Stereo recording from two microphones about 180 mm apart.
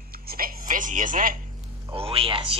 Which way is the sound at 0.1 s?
55° right (ahead or behind).